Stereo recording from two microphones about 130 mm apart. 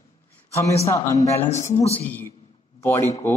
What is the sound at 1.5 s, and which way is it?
Speech, 60° left (ahead or behind).